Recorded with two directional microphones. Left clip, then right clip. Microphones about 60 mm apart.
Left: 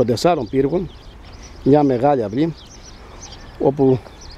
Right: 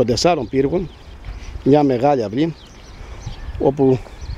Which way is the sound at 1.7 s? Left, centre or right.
Centre.